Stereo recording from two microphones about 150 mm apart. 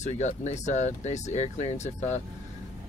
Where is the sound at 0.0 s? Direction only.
50° left (ahead or behind).